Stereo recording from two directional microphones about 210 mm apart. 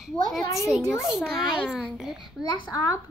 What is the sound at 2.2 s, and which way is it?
Speech, 20° left (ahead or behind).